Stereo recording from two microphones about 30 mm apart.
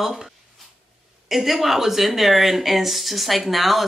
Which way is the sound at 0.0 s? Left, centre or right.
Centre.